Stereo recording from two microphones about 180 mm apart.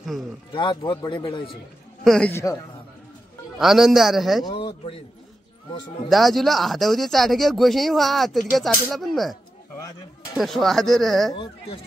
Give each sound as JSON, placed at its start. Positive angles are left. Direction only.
{"t": 0.5, "sound": "speech", "side_deg": 25}
{"t": 2.0, "sound": "speech", "side_deg": 5}
{"t": 3.5, "sound": "speech", "side_deg": 0}
{"t": 4.5, "sound": "speech", "side_deg": 25}
{"t": 6.0, "sound": "speech", "side_deg": 0}
{"t": 11.3, "sound": "speech", "side_deg": 30}